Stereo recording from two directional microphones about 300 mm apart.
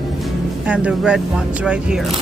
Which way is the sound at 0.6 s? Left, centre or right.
Centre.